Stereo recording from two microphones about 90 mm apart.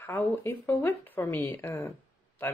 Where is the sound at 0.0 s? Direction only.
25° left (ahead or behind).